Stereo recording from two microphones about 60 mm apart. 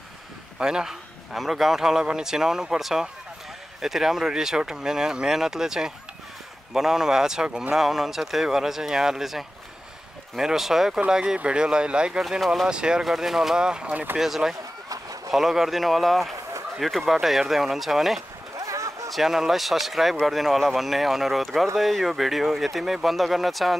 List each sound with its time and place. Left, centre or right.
0.6 s a man's voice: centre
18.6 s a sound: right
19.0 s speech: centre